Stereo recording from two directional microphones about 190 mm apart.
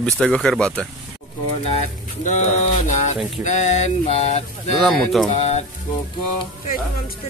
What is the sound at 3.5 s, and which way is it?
Mantra, 35° left (ahead or behind).